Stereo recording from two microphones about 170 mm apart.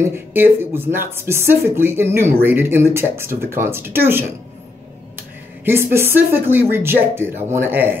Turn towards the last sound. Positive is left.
turn(degrees=-10)  # may be behind; listen again after turning